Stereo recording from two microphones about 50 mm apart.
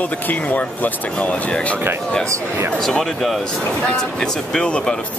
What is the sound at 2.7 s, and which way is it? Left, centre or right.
Speech, centre.